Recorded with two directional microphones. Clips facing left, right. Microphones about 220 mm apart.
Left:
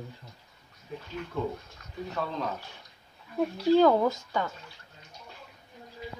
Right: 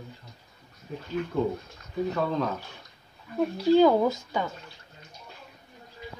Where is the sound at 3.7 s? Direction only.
5° right (ahead or behind).